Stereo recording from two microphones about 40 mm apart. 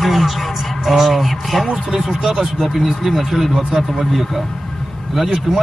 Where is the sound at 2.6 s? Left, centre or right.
Centre.